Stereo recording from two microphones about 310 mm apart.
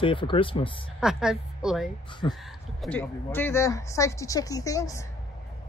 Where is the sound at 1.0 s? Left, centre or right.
Centre.